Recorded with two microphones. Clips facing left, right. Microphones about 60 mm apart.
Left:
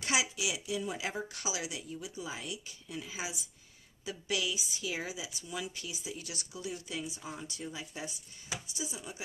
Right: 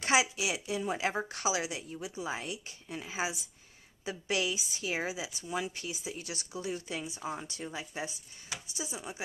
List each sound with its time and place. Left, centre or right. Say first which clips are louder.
0.0 s speech: right 4 dB; right